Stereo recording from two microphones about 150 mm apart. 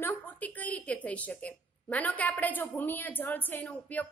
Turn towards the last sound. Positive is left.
turn(degrees=10)  # may be behind; listen again after turning